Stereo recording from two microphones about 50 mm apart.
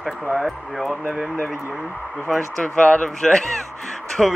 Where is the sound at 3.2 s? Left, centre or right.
Centre.